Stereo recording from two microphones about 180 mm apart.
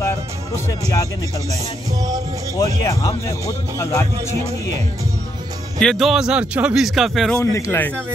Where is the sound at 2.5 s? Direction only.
20° left (ahead or behind).